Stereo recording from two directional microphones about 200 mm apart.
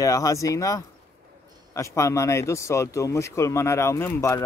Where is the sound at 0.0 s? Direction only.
15° left (ahead or behind).